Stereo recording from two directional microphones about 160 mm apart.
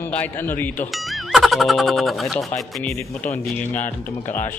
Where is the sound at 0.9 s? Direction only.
Centre (ahead or behind).